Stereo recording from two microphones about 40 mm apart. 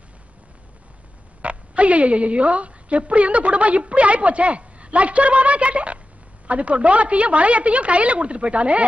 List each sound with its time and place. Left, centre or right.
1.4 s a woman's voice: right